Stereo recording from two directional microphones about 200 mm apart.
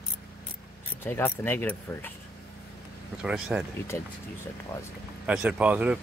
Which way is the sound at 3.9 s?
10° left (ahead or behind).